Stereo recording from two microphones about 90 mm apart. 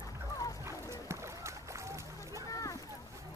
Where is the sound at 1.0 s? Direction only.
30° right (ahead or behind).